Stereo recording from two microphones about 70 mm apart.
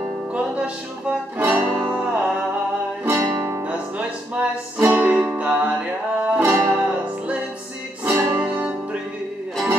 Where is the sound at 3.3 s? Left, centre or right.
Right.